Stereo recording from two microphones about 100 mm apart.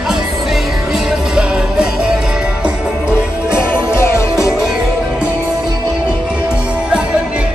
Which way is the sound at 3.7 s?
25° left (ahead or behind).